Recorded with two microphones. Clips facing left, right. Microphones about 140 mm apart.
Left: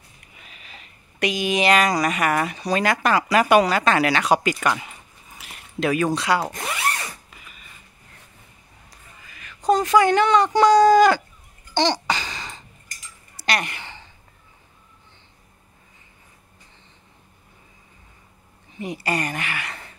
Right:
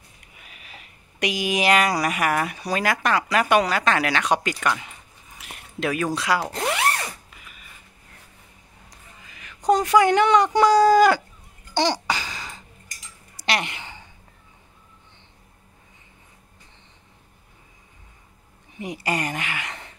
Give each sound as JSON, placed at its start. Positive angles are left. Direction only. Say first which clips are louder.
{"t": 0.4, "sound": "speech", "louder": "even", "side_deg": -10}
{"t": 5.4, "sound": "a sound", "louder": "left 3 dB", "side_deg": 0}
{"t": 6.1, "sound": "speech", "louder": "left 2 dB", "side_deg": 0}
{"t": 6.5, "sound": "drill", "louder": "right 4 dB", "side_deg": -70}
{"t": 9.2, "sound": "speech", "louder": "even", "side_deg": -15}
{"t": 11.7, "sound": "babbling", "louder": "left 1 dB", "side_deg": -10}
{"t": 13.5, "sound": "a sound", "louder": "left 1 dB", "side_deg": -15}
{"t": 18.8, "sound": "a woman's voice", "louder": "left 1 dB", "side_deg": -15}